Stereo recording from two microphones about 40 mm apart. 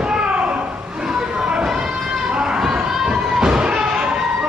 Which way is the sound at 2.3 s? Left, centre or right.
Right.